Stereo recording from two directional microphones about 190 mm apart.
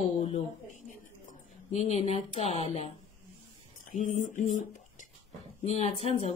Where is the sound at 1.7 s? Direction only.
35° left (ahead or behind).